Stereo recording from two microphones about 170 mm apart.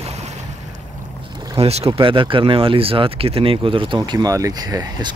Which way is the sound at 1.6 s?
35° right (ahead or behind).